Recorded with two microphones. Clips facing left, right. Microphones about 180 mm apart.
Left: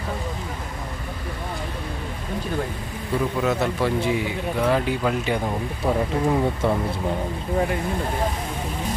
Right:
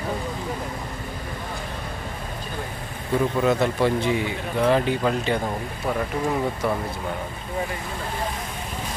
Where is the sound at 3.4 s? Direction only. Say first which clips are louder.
Right 2 dB; centre (ahead or behind).